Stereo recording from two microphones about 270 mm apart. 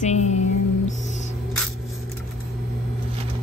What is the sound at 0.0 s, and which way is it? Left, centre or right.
Music, left.